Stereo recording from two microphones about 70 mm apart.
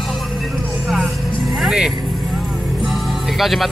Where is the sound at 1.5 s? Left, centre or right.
Centre.